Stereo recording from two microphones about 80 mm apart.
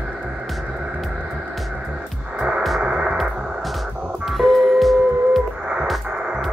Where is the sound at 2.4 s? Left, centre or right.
Centre.